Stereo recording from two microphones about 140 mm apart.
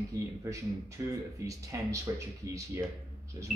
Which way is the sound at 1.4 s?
20° right (ahead or behind).